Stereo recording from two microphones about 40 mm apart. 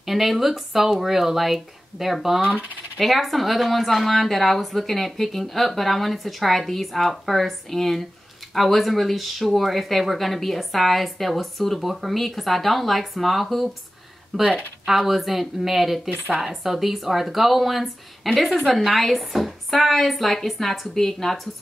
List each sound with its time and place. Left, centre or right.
0.0 s speech: centre
2.4 s speech: right
3.0 s speech: centre